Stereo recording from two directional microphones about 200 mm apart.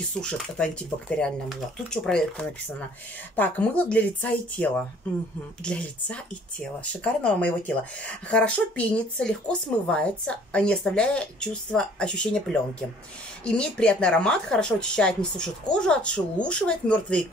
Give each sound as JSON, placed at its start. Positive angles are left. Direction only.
{"t": 0.2, "sound": "speech", "side_deg": 5}
{"t": 1.9, "sound": "speech", "side_deg": 5}
{"t": 13.6, "sound": "speech", "side_deg": 5}